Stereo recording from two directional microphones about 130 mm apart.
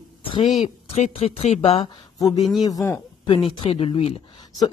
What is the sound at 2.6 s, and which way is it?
Speech, 30° left (ahead or behind).